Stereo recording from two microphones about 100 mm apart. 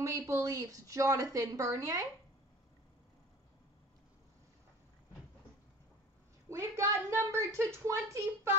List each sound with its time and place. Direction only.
0.0 s a woman's voice: 35° right (ahead or behind)
6.5 s speech: 30° right (ahead or behind)